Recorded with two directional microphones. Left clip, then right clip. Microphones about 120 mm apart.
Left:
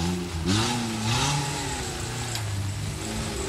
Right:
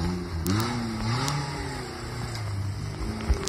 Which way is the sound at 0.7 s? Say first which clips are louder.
Left 3 dB; 55° left (ahead or behind).